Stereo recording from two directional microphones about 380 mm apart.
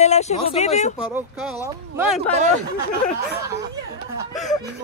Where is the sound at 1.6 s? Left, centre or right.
Centre.